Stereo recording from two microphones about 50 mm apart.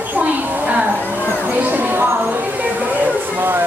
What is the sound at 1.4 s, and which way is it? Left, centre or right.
Speech, right.